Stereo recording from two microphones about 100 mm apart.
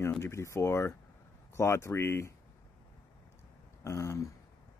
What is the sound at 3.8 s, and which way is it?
Speech, 30° left (ahead or behind).